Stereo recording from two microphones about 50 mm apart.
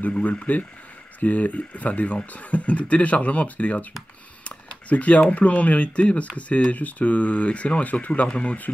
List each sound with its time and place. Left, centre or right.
0.2 s speech: left
4.5 s a sound: left
5.3 s speech: left